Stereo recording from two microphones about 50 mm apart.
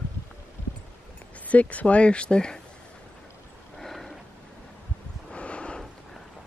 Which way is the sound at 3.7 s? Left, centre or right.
Centre.